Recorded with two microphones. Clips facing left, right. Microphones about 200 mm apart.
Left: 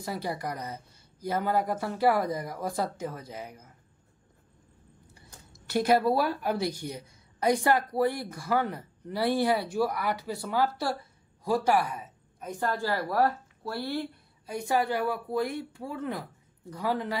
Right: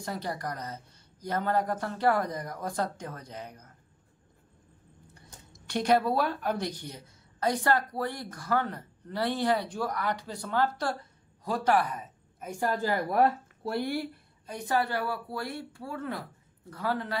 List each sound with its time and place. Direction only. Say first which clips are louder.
0.0 s speech: left 2 dB; 10° left (ahead or behind)
5.1 s speech: even; 5° left (ahead or behind)
12.4 s speech: right 1 dB; 10° right (ahead or behind)
14.4 s speech: left 2 dB; 10° left (ahead or behind)